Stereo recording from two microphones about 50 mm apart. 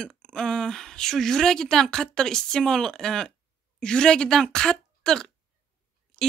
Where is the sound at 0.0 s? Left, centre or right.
Centre.